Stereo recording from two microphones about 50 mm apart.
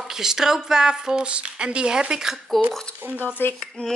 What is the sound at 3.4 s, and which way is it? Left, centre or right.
Speech, left.